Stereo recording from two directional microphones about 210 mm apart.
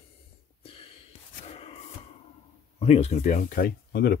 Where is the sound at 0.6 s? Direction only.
25° left (ahead or behind).